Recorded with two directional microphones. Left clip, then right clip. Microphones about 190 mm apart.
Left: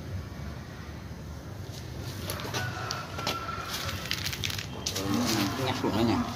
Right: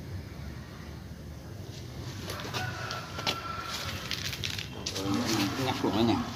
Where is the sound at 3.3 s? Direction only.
20° right (ahead or behind).